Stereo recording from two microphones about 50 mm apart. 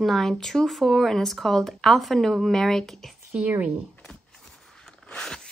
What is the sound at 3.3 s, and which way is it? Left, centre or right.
Speech, right.